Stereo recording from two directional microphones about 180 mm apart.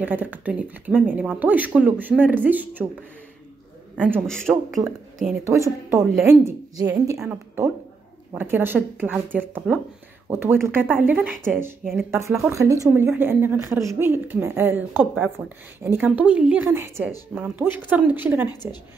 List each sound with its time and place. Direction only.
0.0 s speech: 10° right (ahead or behind)
4.3 s speech: 5° left (ahead or behind)
5.4 s speech: 15° right (ahead or behind)
18.5 s a woman's voice: 20° left (ahead or behind)